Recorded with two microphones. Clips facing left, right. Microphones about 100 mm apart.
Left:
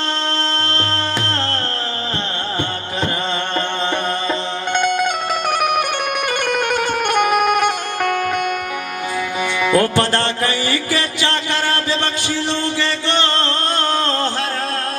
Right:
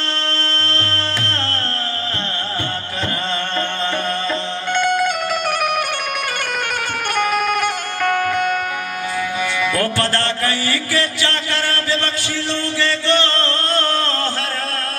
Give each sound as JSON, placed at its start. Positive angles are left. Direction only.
{"t": 0.4, "sound": "music", "side_deg": 20}
{"t": 4.3, "sound": "music", "side_deg": 20}
{"t": 6.5, "sound": "music", "side_deg": 20}
{"t": 9.6, "sound": "music", "side_deg": 20}